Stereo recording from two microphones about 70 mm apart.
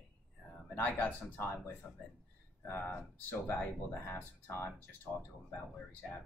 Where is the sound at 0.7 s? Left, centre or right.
Left.